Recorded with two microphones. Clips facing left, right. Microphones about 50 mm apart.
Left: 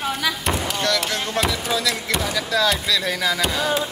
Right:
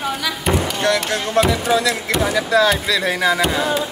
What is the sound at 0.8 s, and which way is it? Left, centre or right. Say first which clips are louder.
Speech: right 4 dB; centre.